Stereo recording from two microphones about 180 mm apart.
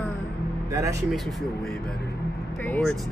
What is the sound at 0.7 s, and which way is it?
Speech, 20° right (ahead or behind).